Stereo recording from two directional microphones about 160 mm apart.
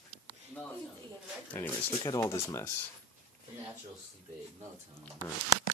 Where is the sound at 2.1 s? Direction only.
20° left (ahead or behind).